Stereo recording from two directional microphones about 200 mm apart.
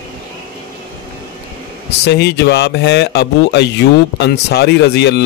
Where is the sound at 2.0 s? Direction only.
55° left (ahead or behind).